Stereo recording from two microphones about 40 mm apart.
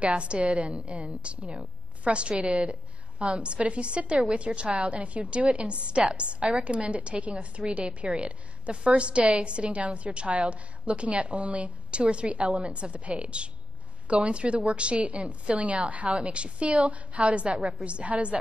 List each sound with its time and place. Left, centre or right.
0.0 s a woman's voice: right